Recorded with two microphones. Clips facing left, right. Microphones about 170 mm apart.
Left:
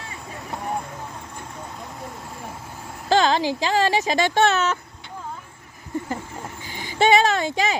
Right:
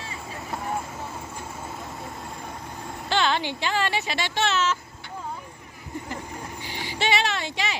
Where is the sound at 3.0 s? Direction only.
40° left (ahead or behind); by 4.7 s 55° left (ahead or behind).